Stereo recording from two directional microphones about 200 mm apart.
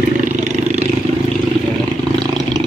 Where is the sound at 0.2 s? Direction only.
35° right (ahead or behind).